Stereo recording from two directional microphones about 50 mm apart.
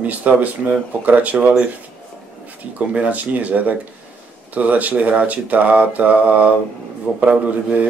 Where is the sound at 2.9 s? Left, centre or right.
Right.